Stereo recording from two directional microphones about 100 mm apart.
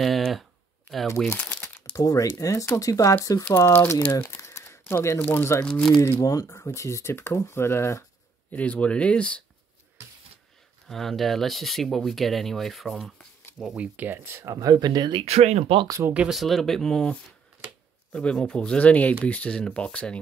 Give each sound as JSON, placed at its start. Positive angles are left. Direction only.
{"t": 0.0, "sound": "a sound", "side_deg": 0}
{"t": 1.3, "sound": "crumpling", "side_deg": 15}
{"t": 2.0, "sound": "speech", "side_deg": 35}
{"t": 4.3, "sound": "speech", "side_deg": 30}
{"t": 5.7, "sound": "speech", "side_deg": 5}
{"t": 5.9, "sound": "speech", "side_deg": 25}
{"t": 8.5, "sound": "speech", "side_deg": 15}
{"t": 10.9, "sound": "speech", "side_deg": 0}
{"t": 13.7, "sound": "speech", "side_deg": -20}
{"t": 15.2, "sound": "speech", "side_deg": -90}
{"t": 16.1, "sound": "speech", "side_deg": -10}
{"t": 16.3, "sound": "speech", "side_deg": 0}